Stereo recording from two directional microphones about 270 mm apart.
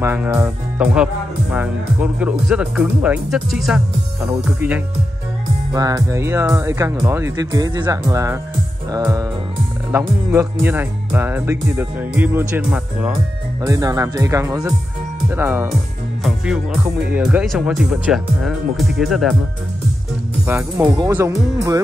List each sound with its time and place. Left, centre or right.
0.0 s speech: centre
20.4 s speech: centre